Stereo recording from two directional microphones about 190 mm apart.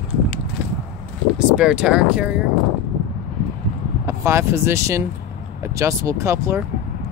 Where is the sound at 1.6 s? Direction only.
5° right (ahead or behind).